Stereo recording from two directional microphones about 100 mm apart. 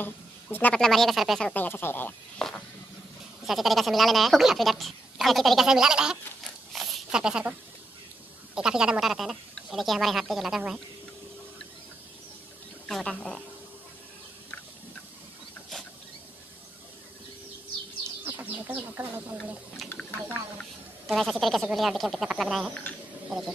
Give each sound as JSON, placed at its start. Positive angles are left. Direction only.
{"t": 0.0, "sound": "speech", "side_deg": 20}
{"t": 0.7, "sound": "speech", "side_deg": 5}
{"t": 1.5, "sound": "speech", "side_deg": 20}
{"t": 2.3, "sound": "speech", "side_deg": 10}
{"t": 6.7, "sound": "a sound", "side_deg": 0}
{"t": 8.5, "sound": "speech", "side_deg": -5}
{"t": 12.8, "sound": "speech", "side_deg": 5}
{"t": 18.2, "sound": "speech", "side_deg": -20}
{"t": 21.1, "sound": "speech", "side_deg": 0}